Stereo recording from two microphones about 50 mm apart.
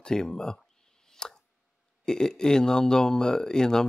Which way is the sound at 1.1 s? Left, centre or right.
Centre.